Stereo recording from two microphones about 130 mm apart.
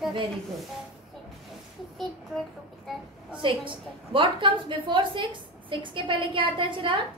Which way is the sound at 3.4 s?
40° right (ahead or behind).